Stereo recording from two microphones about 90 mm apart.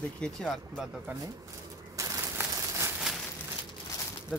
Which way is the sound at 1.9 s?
35° right (ahead or behind).